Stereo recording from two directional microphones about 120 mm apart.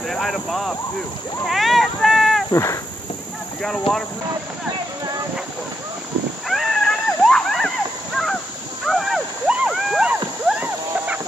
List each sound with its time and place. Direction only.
0.1 s speech: centre (ahead or behind)
2.5 s speech: 25° left (ahead or behind)
6.4 s a sound: centre (ahead or behind)
8.8 s vehicle: centre (ahead or behind)